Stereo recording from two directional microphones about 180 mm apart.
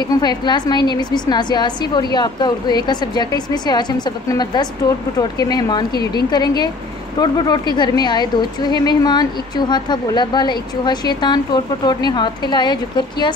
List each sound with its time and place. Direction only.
0.1 s speech: 25° left (ahead or behind)